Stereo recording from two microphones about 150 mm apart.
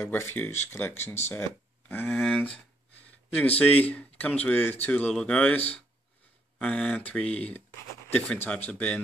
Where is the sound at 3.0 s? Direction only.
10° left (ahead or behind).